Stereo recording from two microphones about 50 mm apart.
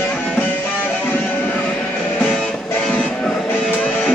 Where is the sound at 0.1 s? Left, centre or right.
Left.